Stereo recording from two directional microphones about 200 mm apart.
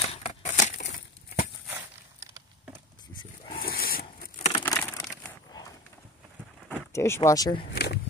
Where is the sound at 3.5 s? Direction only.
50° left (ahead or behind).